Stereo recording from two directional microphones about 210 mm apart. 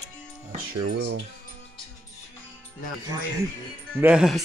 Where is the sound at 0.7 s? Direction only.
55° right (ahead or behind).